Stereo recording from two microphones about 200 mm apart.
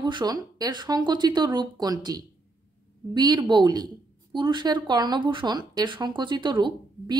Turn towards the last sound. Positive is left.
turn(degrees=-20)  # may be behind; listen again after turning